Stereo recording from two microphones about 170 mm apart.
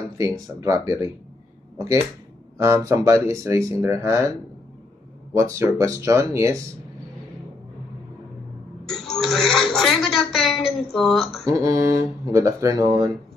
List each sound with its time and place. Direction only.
0.2 s speech: 20° right (ahead or behind)
2.5 s speech: 20° right (ahead or behind)
5.3 s speech: 15° right (ahead or behind)
8.8 s a sound: centre (ahead or behind)
11.4 s speech: 20° right (ahead or behind)